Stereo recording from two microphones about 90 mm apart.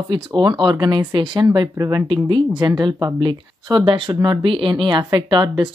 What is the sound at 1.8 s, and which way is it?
Speech, 40° right (ahead or behind).